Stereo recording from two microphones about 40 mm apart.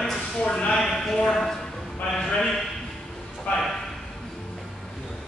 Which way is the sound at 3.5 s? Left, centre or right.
Left.